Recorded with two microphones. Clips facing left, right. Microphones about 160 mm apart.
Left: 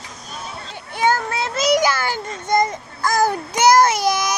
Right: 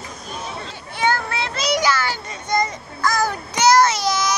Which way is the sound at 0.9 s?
45° left (ahead or behind).